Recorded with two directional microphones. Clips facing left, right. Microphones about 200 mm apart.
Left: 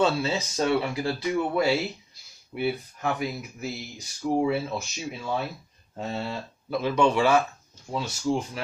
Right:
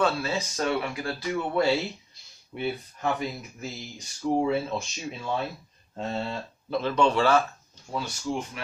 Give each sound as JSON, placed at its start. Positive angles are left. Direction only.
{"t": 0.0, "sound": "speech", "side_deg": 20}
{"t": 1.5, "sound": "speech", "side_deg": 10}
{"t": 7.9, "sound": "speech", "side_deg": 25}